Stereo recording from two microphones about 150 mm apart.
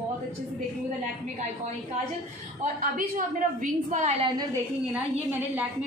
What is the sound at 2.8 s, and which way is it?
A woman's voice, 65° right (ahead or behind).